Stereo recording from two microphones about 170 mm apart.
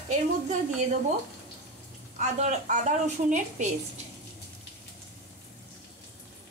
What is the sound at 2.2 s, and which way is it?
A woman's voice, 45° right (ahead or behind).